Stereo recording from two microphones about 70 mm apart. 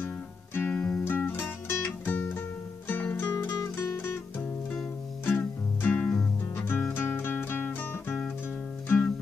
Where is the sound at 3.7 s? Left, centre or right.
Left.